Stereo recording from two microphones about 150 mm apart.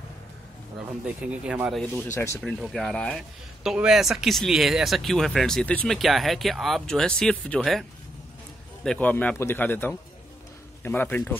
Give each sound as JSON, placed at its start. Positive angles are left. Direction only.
{"t": 0.7, "sound": "speech", "side_deg": -10}
{"t": 2.1, "sound": "a man's voice", "side_deg": 15}
{"t": 2.4, "sound": "speech", "side_deg": 5}
{"t": 8.8, "sound": "a man's voice", "side_deg": 10}